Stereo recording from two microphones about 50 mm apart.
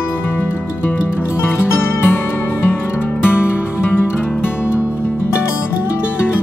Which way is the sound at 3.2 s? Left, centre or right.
Left.